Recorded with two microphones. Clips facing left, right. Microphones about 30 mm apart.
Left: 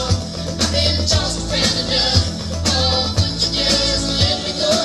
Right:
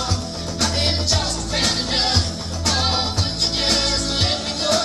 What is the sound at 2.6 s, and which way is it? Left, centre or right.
Music, left.